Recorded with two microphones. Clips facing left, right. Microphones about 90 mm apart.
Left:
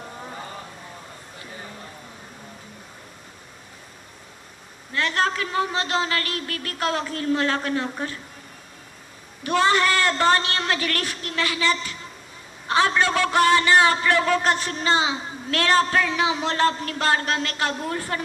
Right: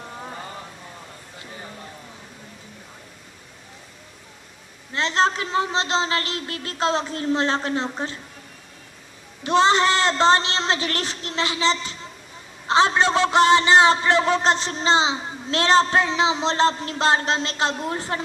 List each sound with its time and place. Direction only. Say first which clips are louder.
4.9 s a man's voice: right 2 dB; 25° right (ahead or behind)
9.4 s a man's voice: right 2 dB; 25° right (ahead or behind)